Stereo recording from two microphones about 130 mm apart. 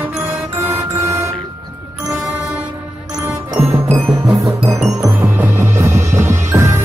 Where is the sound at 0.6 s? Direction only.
20° right (ahead or behind).